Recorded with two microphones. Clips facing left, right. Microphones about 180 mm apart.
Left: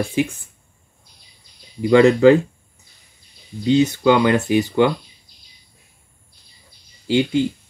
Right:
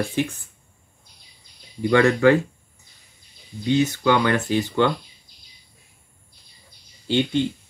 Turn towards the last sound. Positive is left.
turn(degrees=10)  # may be behind; listen again after turning